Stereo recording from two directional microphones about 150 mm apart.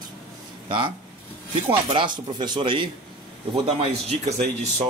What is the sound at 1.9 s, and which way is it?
Speech, 30° right (ahead or behind).